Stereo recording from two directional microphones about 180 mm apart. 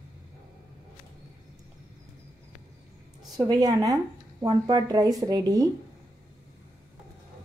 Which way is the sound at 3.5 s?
20° right (ahead or behind).